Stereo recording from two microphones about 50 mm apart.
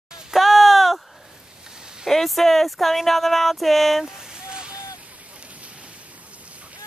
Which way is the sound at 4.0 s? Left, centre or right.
Centre.